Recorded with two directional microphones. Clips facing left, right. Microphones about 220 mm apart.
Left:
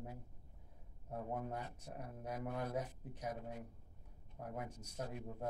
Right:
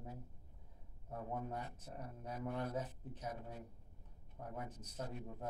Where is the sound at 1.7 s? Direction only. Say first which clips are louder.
Left 1 dB; 10° left (ahead or behind).